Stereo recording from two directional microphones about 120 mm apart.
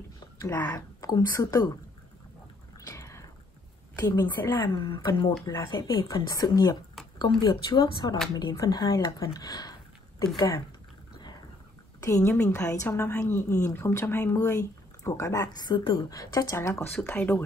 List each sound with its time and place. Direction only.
0.5 s speech: 15° left (ahead or behind)
0.7 s speech: 30° left (ahead or behind)
2.9 s a sound: 25° left (ahead or behind)
4.0 s speech: 30° left (ahead or behind)
4.7 s speech: 40° left (ahead or behind)
12.0 s speech: 25° left (ahead or behind)
16.9 s speech: 15° left (ahead or behind)